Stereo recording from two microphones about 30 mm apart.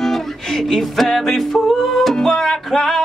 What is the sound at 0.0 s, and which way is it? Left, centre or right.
Music, centre.